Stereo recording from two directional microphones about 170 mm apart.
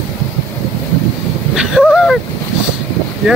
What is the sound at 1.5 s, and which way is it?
Speech, 5° right (ahead or behind).